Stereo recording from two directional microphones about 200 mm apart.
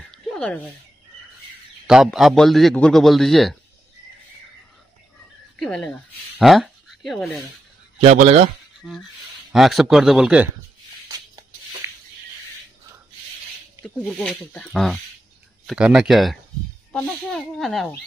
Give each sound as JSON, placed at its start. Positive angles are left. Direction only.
{"t": 0.1, "sound": "a sound", "side_deg": 5}
{"t": 1.9, "sound": "a man's voice", "side_deg": 0}
{"t": 5.6, "sound": "speech", "side_deg": 5}
{"t": 8.0, "sound": "speech", "side_deg": -35}
{"t": 9.5, "sound": "a man's voice", "side_deg": 0}
{"t": 11.8, "sound": "a sound", "side_deg": -15}
{"t": 13.8, "sound": "a man's voice", "side_deg": 5}